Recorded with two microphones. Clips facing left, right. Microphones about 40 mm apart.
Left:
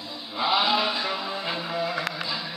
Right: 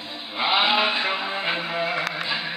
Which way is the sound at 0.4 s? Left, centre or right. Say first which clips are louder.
Right 2 dB; right.